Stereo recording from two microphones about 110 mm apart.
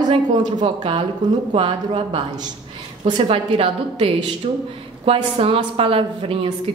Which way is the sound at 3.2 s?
60° right (ahead or behind).